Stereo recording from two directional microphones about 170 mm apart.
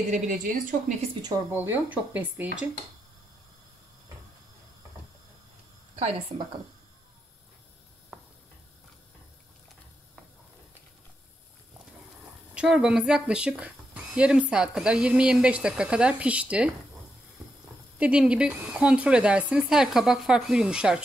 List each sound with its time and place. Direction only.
0.1 s a woman's voice: 50° right (ahead or behind)
1.5 s speech: 10° right (ahead or behind)
5.9 s a woman's voice: 40° right (ahead or behind)
12.5 s speech: 5° right (ahead or behind)
17.9 s speech: 5° right (ahead or behind)